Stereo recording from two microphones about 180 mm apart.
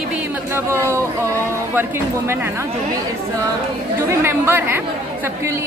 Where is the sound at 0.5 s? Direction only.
15° right (ahead or behind).